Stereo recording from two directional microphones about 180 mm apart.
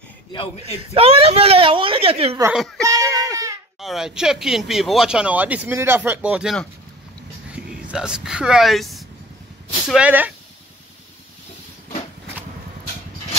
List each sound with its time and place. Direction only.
0.3 s a man's voice: 30° left (ahead or behind)
0.9 s speech: 35° right (ahead or behind)
2.8 s a sound: 20° right (ahead or behind)
3.8 s speech: 5° right (ahead or behind)